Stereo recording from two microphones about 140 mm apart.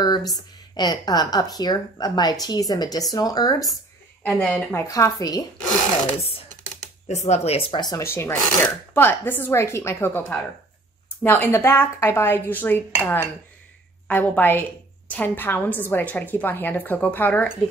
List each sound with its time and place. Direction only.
0.0 s a woman's voice: 30° left (ahead or behind)
4.2 s speech: 10° left (ahead or behind)
7.1 s speech: 55° left (ahead or behind)
7.9 s speech: 20° left (ahead or behind)